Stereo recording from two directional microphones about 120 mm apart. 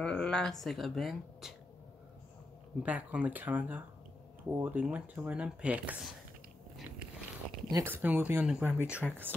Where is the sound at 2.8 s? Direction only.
10° right (ahead or behind).